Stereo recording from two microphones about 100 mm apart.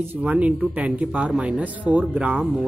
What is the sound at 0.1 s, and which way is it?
A man's voice, 15° right (ahead or behind).